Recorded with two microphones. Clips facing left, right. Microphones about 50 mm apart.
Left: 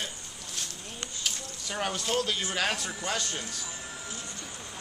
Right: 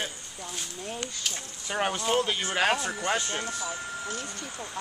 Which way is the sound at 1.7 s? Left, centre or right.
Right.